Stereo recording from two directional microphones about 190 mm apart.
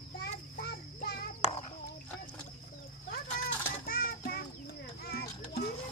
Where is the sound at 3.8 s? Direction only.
50° left (ahead or behind).